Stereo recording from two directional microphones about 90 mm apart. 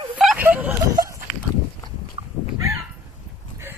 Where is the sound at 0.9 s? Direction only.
35° right (ahead or behind).